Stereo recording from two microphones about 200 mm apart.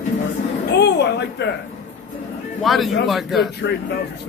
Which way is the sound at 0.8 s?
55° left (ahead or behind).